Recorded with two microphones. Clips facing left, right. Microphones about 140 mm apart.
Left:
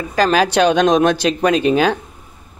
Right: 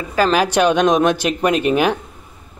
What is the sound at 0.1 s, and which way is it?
Speech, 35° left (ahead or behind).